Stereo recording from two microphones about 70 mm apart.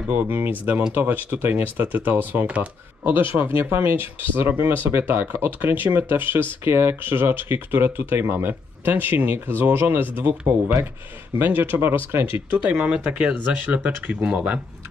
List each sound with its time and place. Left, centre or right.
0.3 s speech: right
3.1 s speech: right
10.4 s speech: right
11.3 s speech: right
12.4 s speech: right